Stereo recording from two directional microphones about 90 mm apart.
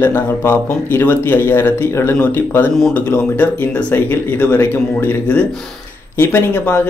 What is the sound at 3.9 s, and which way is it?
Speech, 25° left (ahead or behind).